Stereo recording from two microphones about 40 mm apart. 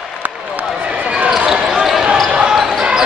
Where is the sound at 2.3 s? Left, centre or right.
Centre.